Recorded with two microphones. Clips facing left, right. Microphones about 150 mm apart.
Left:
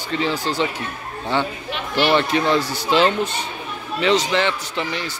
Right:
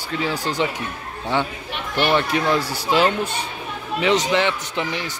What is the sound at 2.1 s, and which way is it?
Speech, 5° right (ahead or behind).